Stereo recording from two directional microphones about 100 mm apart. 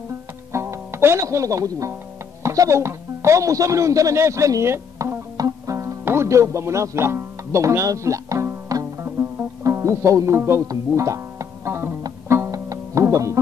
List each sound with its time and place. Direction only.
0.5 s music: 25° right (ahead or behind)
2.4 s speech: 30° right (ahead or behind)
12.3 s music: 30° right (ahead or behind)